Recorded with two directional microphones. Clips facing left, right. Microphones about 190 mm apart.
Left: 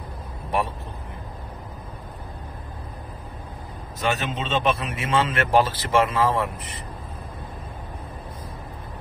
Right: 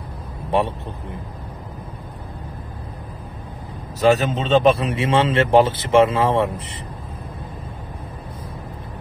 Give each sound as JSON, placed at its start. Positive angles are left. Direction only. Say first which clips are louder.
{"t": 4.0, "sound": "a man's voice", "louder": "right 9 dB", "side_deg": -35}